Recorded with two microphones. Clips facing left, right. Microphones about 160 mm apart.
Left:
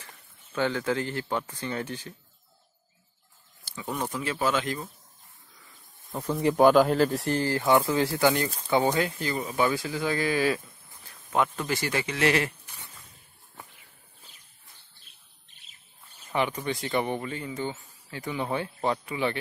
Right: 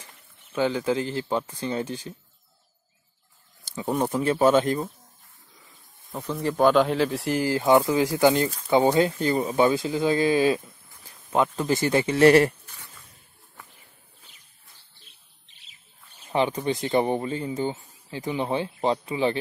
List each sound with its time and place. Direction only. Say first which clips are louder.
0.5 s speech: right 3 dB; 15° right (ahead or behind)
3.8 s speech: right 7 dB; 40° right (ahead or behind)
6.1 s speech: left 2 dB; 10° left (ahead or behind)
7.4 s speech: right 4 dB; 15° right (ahead or behind)
12.3 s speech: right 10 dB; 45° right (ahead or behind)
15.4 s bird: right 1 dB; 50° left (ahead or behind)
16.3 s speech: right 4 dB; 25° right (ahead or behind)